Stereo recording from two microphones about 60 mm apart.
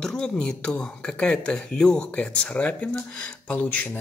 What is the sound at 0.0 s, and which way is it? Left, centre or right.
Speech, centre.